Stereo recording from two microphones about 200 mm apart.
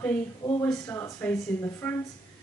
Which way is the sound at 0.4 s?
20° left (ahead or behind).